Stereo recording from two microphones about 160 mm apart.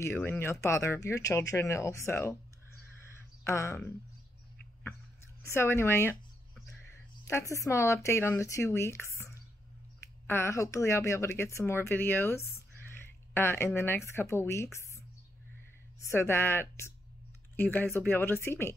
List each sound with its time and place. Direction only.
0.0 s a woman's voice: 15° left (ahead or behind)
3.4 s a woman's voice: 15° left (ahead or behind)
5.5 s a woman's voice: 15° left (ahead or behind)
7.2 s a woman's voice: 15° left (ahead or behind)
16.0 s a woman's voice: 15° left (ahead or behind)